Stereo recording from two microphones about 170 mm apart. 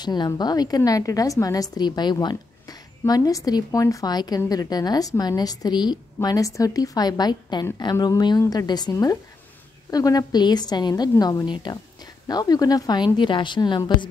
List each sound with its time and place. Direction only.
0.0 s a woman's voice: 25° left (ahead or behind)